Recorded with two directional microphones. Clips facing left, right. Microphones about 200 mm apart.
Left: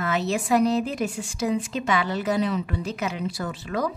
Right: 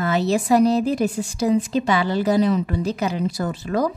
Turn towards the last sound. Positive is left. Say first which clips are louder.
# right 5 dB
turn(degrees=-40)  # may be behind; listen again after turning